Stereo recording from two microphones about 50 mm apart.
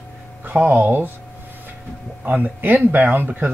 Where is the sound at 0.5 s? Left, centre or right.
Right.